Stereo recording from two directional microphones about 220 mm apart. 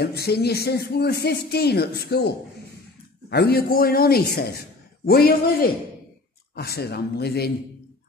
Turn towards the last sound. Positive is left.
turn(degrees=45)  # may be behind; listen again after turning